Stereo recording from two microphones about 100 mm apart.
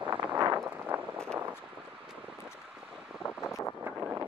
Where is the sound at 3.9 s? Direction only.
20° right (ahead or behind).